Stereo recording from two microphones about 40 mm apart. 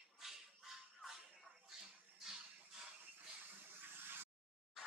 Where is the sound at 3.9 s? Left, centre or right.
Right.